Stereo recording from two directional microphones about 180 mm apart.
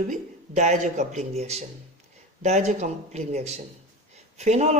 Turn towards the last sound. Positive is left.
turn(degrees=-40)  # may be behind; listen again after turning